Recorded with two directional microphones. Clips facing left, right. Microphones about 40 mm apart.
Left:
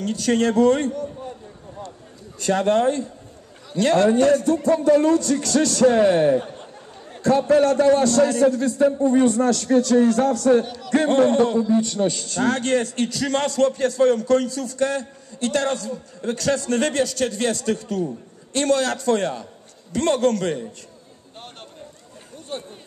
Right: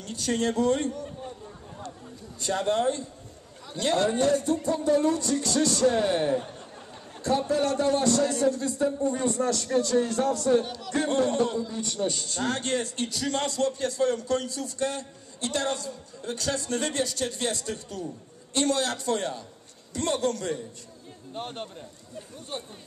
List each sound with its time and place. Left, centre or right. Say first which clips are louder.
0.0 s a man's voice: left 8 dB; left
2.4 s a man's voice: left 7 dB; left
4.6 s a man's voice: left 8 dB; left
10.6 s speech: left 4 dB; centre
10.9 s a man's voice: left 8 dB; left
18.5 s a man's voice: left 6 dB; left
19.9 s a man's voice: left 8 dB; left
21.4 s speech: right 6 dB; centre